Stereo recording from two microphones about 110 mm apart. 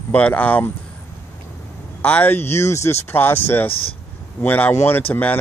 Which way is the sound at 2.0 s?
15° left (ahead or behind).